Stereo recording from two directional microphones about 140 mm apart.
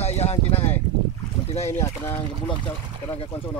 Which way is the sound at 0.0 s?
50° left (ahead or behind).